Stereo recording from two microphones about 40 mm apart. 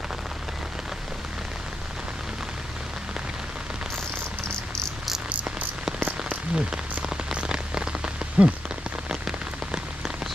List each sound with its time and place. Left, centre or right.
5.9 s rain on surface: right
6.5 s rain on surface: centre